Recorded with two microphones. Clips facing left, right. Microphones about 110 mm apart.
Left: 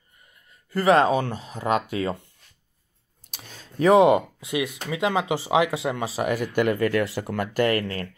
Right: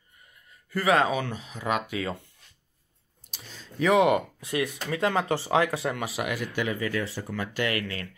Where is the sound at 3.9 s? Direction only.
30° left (ahead or behind).